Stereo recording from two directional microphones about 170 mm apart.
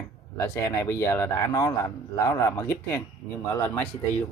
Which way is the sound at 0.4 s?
15° left (ahead or behind).